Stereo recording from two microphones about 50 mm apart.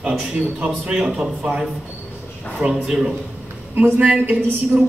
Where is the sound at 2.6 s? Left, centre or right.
Centre.